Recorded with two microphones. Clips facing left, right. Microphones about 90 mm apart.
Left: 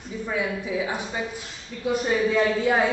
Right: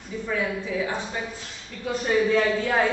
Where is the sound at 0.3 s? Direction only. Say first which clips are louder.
Even; 15° left (ahead or behind).